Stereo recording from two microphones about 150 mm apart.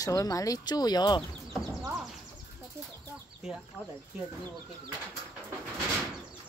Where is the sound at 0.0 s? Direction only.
25° left (ahead or behind).